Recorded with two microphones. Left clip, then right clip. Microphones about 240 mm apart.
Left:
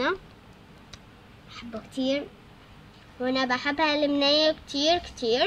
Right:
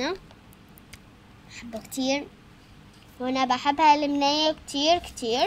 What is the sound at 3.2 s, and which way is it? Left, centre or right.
A child's voice, centre.